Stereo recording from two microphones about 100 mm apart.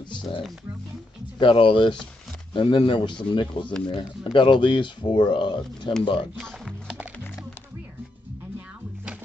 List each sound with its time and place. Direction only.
1.4 s speech: 60° left (ahead or behind)
6.3 s speech: 5° right (ahead or behind)